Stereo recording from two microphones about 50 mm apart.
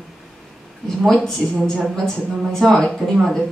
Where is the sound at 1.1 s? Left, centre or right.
Centre.